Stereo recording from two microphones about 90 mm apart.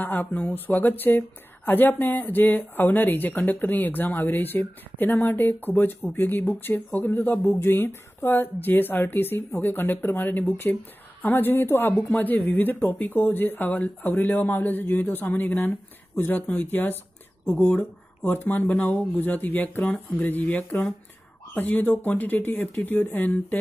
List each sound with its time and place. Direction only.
0.0 s speech: 20° left (ahead or behind)